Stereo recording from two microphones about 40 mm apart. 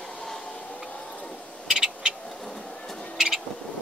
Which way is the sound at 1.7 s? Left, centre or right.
Centre.